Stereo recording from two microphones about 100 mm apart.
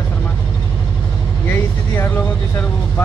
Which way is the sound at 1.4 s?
20° left (ahead or behind).